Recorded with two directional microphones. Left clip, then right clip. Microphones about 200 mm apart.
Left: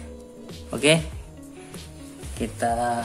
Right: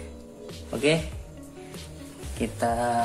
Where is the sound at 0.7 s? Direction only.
20° left (ahead or behind).